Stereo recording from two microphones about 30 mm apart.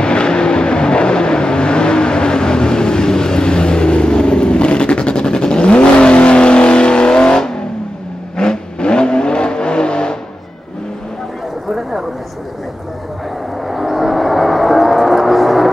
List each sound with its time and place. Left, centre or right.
0.0 s vehicle: left
13.7 s vehicle: centre